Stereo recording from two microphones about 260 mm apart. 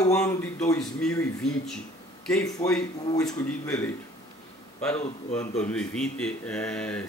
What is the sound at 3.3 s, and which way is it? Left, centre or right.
Speech, centre.